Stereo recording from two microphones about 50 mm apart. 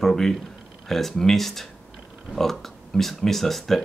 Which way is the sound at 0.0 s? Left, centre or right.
Centre.